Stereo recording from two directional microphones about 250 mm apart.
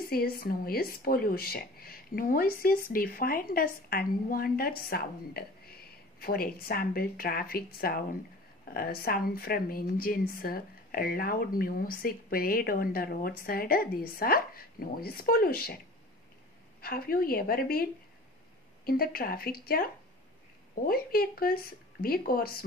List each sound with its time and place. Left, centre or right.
0.0 s a woman's voice: left
16.8 s a woman's voice: left
18.9 s a woman's voice: left